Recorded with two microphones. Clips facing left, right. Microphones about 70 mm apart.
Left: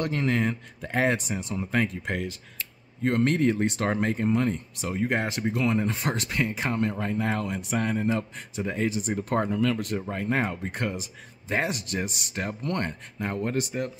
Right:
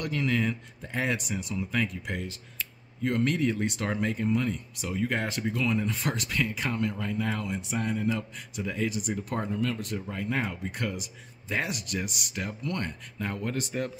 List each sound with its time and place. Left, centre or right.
0.0 s speech: left
5.0 s speech: left
5.7 s speech: left
5.9 s speech: left
8.0 s speech: left
13.2 s speech: left
13.6 s speech: centre